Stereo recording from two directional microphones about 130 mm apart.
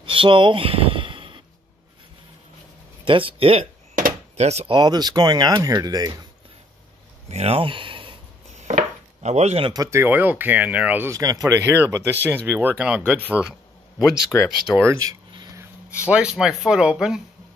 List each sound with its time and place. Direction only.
0.0 s a sound: 40° right (ahead or behind)
3.1 s speech: 45° right (ahead or behind)
3.9 s a sound: 90° right
4.5 s speech: 55° right (ahead or behind)
4.7 s speech: 35° right (ahead or behind)
7.2 s speech: 55° right (ahead or behind)
8.6 s chopping: 65° right (ahead or behind)
9.7 s speech: 25° right (ahead or behind)
11.1 s speech: 25° right (ahead or behind); by 14.8 s centre (ahead or behind)
14.8 s speech: 20° right (ahead or behind)
15.3 s a sound: 30° right (ahead or behind)
16.1 s speech: 5° right (ahead or behind)